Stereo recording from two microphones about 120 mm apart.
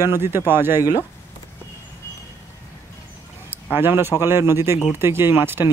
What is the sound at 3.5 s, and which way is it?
Speech, 20° right (ahead or behind).